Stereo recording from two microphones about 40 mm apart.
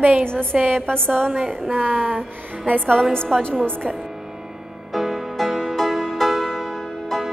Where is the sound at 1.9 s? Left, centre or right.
Right.